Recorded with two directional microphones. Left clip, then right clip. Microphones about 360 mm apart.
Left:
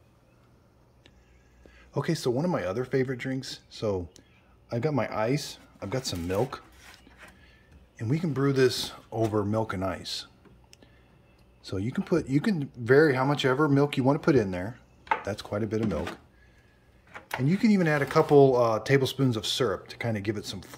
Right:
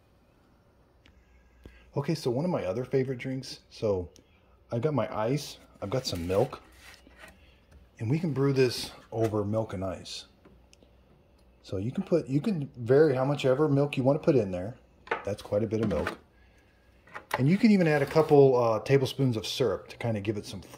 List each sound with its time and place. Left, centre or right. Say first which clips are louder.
1.9 s speech: left 2 dB; centre
7.9 s speech: left 1 dB; centre
9.3 s speech: left 2 dB; centre
11.7 s speech: left 1 dB; left
12.0 s speech: left 1 dB; centre
17.3 s speech: right 1 dB; centre